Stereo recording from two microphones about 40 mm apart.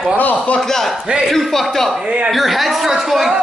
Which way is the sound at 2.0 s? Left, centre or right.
Right.